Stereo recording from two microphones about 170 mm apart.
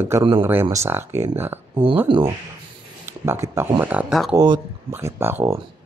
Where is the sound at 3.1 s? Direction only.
15° right (ahead or behind).